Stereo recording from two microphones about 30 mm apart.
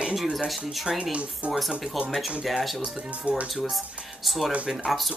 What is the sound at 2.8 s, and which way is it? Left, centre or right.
Speech, centre.